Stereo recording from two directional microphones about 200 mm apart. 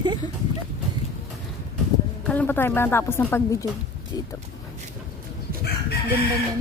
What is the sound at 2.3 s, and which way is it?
A woman's voice, 10° left (ahead or behind).